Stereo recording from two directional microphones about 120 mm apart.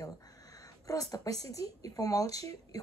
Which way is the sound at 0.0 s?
30° left (ahead or behind).